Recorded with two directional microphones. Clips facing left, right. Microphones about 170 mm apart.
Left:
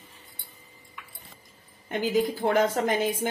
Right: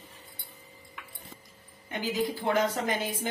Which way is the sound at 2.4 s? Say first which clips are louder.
Left 2 dB; 50° left (ahead or behind).